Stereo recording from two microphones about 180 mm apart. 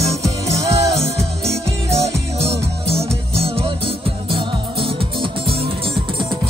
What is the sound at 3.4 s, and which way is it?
Music, 30° right (ahead or behind).